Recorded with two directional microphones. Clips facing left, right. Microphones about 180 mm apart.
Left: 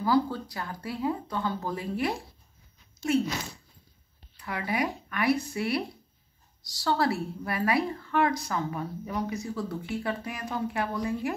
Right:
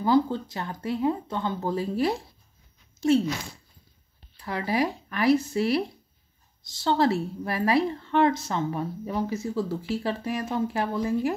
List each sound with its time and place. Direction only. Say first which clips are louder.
0.0 s speech: right 3 dB; 20° right (ahead or behind)
4.4 s speech: right 4 dB; 30° right (ahead or behind)